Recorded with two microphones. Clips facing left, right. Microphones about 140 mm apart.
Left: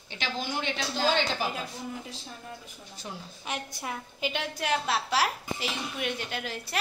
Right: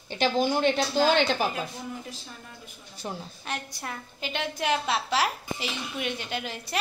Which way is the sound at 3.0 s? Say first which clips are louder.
Right 5 dB; 45° right (ahead or behind).